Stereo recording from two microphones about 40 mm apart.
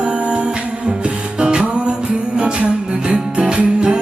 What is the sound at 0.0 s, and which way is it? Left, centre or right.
Music, right.